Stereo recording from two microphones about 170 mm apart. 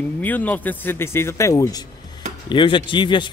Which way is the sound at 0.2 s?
10° left (ahead or behind).